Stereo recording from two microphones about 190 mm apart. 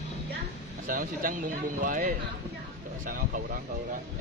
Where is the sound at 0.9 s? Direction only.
45° right (ahead or behind).